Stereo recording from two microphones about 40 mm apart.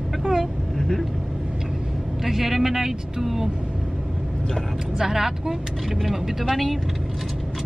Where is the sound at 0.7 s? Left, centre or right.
Centre.